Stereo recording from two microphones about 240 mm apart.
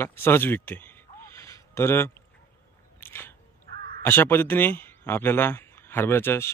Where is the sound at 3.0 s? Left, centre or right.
Centre.